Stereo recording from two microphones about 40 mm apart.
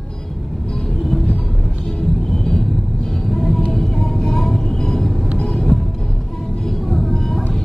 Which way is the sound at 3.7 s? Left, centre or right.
Centre.